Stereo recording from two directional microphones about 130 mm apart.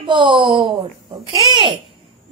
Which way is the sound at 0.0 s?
40° right (ahead or behind).